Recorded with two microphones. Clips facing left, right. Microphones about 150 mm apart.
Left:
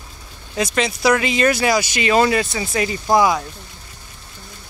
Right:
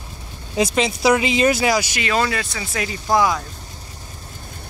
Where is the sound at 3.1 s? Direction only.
15° left (ahead or behind).